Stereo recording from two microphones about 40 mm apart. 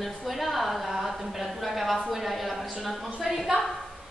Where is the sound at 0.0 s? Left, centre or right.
Centre.